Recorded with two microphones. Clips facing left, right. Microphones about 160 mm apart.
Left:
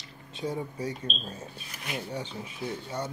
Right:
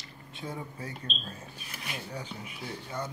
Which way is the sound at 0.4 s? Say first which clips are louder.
Left 6 dB; 20° left (ahead or behind).